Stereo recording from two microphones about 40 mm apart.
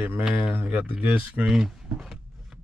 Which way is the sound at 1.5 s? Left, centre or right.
Centre.